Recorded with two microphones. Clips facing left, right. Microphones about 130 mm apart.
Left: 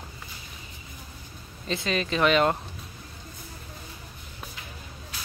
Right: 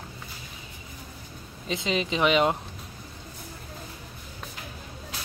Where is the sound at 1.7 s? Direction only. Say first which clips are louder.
Even; 15° right (ahead or behind).